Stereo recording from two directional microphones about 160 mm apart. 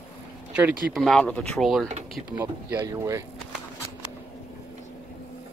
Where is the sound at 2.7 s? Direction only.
20° right (ahead or behind).